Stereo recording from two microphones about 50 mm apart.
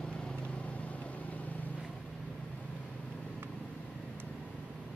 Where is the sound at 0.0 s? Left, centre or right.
Centre; by 1.7 s left.